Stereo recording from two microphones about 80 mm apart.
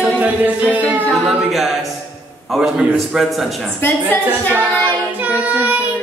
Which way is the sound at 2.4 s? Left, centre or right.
Centre.